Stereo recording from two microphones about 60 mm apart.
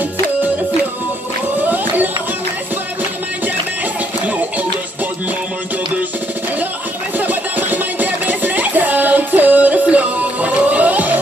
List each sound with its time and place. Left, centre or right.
1.6 s music: right
4.3 s music: right
7.2 s music: right